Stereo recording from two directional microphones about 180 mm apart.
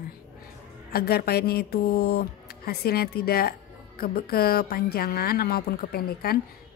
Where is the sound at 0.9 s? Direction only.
55° left (ahead or behind).